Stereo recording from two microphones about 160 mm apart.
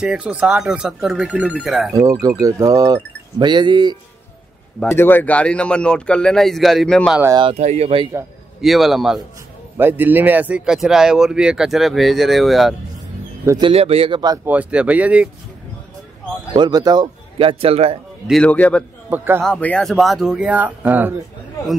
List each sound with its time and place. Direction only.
0.0 s speech: 5° right (ahead or behind)
2.0 s speech: 20° right (ahead or behind)
4.9 s speech: 10° left (ahead or behind)
7.3 s a man's voice: 35° right (ahead or behind)
8.5 s speech: centre (ahead or behind)
9.8 s speech: 10° right (ahead or behind)
13.5 s a man's voice: 30° right (ahead or behind)
14.4 s speech: 10° right (ahead or behind)
16.5 s a man's voice: 25° right (ahead or behind)
18.2 s speech: 5° left (ahead or behind)
19.0 s speech: 15° right (ahead or behind)
19.4 s speech: 10° left (ahead or behind); by 21.1 s 10° right (ahead or behind)